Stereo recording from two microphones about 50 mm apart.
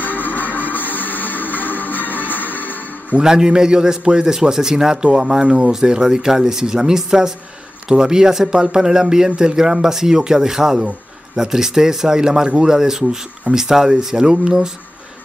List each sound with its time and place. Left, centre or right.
0.0 s music: left
3.2 s a man's voice: centre